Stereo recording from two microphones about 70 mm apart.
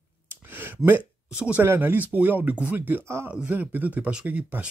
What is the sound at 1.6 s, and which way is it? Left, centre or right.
Speech, right.